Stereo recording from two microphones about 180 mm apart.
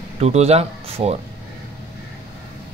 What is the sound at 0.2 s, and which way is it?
Speech, 35° right (ahead or behind).